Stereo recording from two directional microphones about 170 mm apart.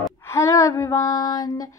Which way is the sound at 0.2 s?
15° left (ahead or behind).